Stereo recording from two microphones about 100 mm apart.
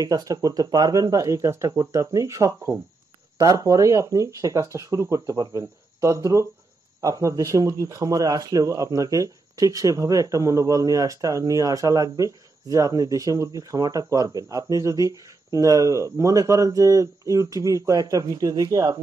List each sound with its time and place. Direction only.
0.0 s speech: 40° right (ahead or behind)